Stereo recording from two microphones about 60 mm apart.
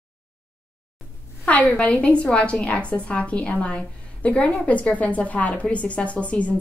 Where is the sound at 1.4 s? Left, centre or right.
Left.